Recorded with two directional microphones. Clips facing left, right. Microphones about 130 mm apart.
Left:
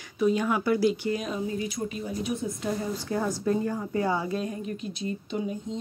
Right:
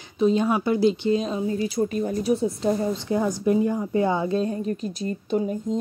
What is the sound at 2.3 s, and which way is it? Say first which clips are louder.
Speech: right 9 dB; 30° right (ahead or behind).